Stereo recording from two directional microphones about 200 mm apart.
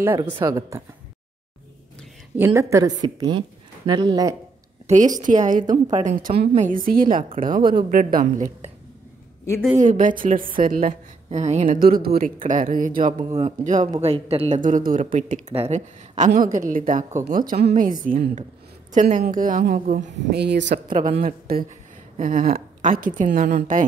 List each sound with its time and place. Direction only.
0.4 s a woman's voice: 15° right (ahead or behind)
2.3 s a woman's voice: 10° right (ahead or behind)
4.8 s a woman's voice: 35° right (ahead or behind)
9.8 s a woman's voice: 40° right (ahead or behind)
11.8 s a woman's voice: 50° right (ahead or behind)
13.2 s a woman's voice: 30° right (ahead or behind)
20.2 s speech: 60° right (ahead or behind)
21.2 s a woman's voice: 45° right (ahead or behind)